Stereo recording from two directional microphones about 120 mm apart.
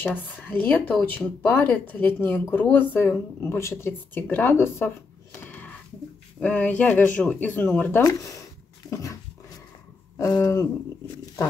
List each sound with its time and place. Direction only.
0.0 s speech: 15° left (ahead or behind)
6.4 s speech: 15° left (ahead or behind)
10.4 s speech: 25° left (ahead or behind)